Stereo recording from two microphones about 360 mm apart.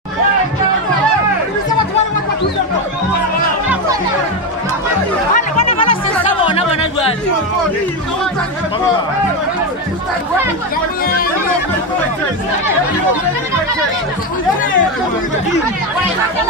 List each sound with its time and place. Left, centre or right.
5.3 s chatter: centre